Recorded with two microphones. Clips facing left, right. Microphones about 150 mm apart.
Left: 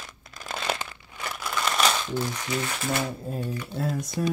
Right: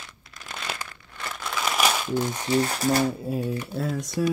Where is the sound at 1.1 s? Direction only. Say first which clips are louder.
Even; 10° left (ahead or behind).